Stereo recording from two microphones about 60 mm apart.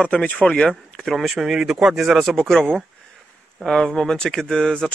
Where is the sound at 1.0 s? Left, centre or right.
Centre.